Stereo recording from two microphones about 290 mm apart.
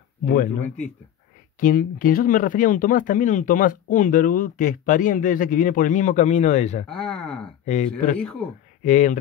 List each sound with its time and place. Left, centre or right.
0.2 s speech: left
6.9 s speech: centre
7.6 s speech: left
8.2 s speech: centre
8.8 s speech: left